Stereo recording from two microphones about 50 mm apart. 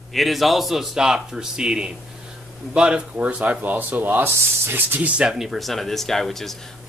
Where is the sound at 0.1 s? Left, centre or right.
Centre.